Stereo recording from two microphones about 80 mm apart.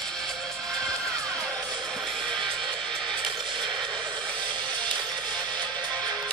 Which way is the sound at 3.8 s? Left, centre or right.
Right.